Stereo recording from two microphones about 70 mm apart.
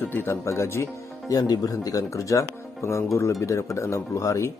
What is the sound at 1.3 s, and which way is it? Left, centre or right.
Speech, left.